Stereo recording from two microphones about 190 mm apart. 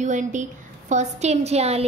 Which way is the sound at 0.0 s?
40° right (ahead or behind).